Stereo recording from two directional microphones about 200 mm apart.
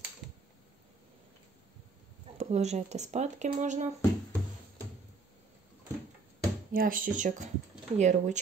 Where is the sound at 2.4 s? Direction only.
35° right (ahead or behind).